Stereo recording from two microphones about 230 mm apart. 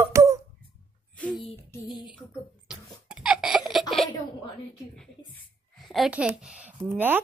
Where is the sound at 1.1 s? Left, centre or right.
Centre.